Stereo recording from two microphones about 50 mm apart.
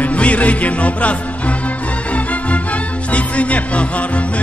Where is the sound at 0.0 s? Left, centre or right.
Left.